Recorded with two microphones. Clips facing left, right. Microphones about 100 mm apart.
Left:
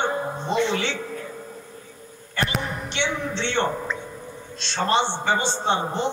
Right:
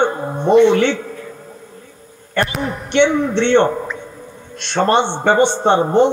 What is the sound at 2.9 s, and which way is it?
A man's voice, 55° right (ahead or behind).